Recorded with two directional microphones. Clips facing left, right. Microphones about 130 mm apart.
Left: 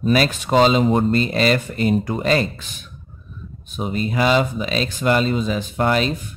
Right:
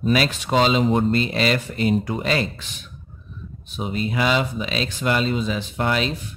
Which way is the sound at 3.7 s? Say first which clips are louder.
Left 2 dB; 45° left (ahead or behind).